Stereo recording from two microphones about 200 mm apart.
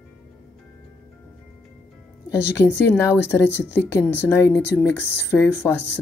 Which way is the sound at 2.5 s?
10° left (ahead or behind).